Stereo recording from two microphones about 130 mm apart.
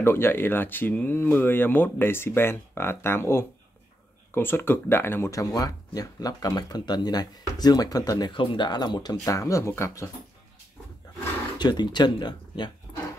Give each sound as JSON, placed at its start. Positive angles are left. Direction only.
{"t": 0.0, "sound": "speech", "side_deg": 20}
{"t": 11.5, "sound": "speech", "side_deg": 35}